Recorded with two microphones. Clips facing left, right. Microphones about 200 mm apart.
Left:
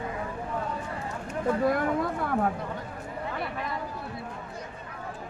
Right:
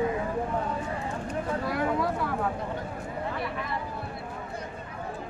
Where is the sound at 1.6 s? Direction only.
50° left (ahead or behind).